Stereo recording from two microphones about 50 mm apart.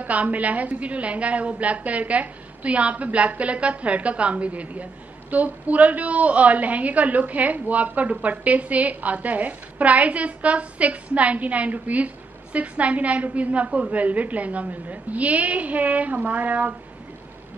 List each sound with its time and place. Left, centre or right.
0.0 s a woman's voice: right